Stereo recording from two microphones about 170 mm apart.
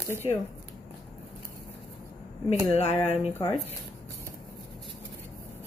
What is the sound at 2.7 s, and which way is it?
Speech, 40° left (ahead or behind).